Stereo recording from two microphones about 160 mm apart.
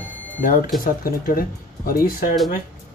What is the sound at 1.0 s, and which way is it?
Speech, 65° left (ahead or behind).